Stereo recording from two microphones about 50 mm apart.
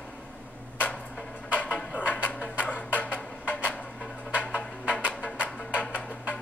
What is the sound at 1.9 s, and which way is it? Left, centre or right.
Music, right.